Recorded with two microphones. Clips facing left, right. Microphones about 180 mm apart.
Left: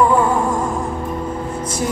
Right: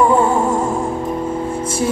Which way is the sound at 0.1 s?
25° right (ahead or behind).